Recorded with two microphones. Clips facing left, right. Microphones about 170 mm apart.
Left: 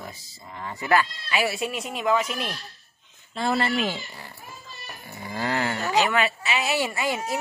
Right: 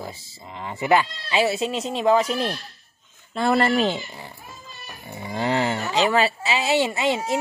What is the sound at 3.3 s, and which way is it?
Speech, 55° right (ahead or behind).